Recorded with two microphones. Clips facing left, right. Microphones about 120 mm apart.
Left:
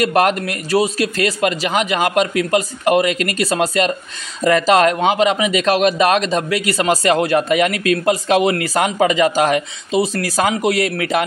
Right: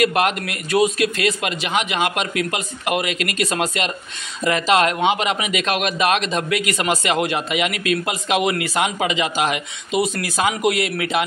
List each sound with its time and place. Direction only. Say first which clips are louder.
0.0 s speech: left 3 dB; 40° left (ahead or behind)